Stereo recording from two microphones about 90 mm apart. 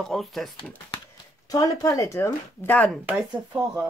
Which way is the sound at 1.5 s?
40° left (ahead or behind).